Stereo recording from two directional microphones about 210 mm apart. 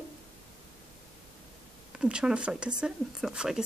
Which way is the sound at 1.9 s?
5° right (ahead or behind).